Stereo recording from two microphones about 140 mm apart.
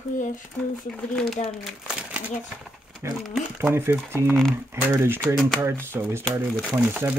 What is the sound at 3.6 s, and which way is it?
Speech, 15° right (ahead or behind).